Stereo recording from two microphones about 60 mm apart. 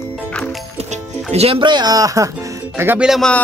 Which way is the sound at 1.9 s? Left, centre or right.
Right.